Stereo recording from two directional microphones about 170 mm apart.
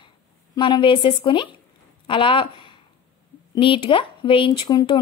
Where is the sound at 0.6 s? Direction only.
30° left (ahead or behind).